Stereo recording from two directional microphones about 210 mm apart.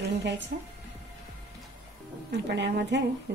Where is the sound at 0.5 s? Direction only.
45° right (ahead or behind).